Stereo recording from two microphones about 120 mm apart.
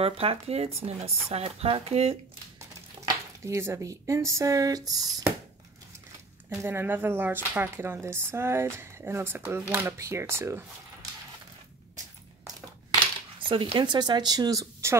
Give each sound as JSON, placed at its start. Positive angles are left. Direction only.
{"t": 0.0, "sound": "speech", "side_deg": -55}
{"t": 3.4, "sound": "speech", "side_deg": -20}
{"t": 6.6, "sound": "speech", "side_deg": -20}
{"t": 13.4, "sound": "speech", "side_deg": -45}